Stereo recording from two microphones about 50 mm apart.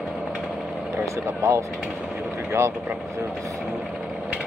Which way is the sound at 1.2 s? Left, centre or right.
Right.